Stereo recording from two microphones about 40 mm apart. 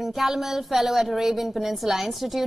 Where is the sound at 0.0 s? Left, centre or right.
Centre.